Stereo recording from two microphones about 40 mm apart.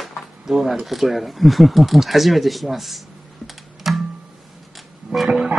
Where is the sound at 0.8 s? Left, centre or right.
Centre.